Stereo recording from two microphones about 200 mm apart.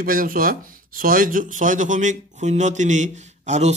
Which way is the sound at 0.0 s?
45° right (ahead or behind).